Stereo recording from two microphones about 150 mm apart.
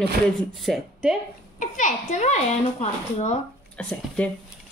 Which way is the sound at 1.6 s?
55° left (ahead or behind).